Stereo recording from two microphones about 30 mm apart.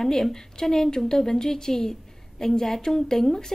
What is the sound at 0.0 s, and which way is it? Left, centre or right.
A woman's voice, centre.